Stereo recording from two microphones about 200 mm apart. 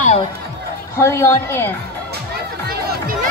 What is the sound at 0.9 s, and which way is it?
Speech, 15° left (ahead or behind).